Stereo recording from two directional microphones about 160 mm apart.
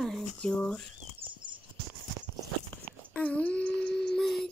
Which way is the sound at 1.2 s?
30° right (ahead or behind).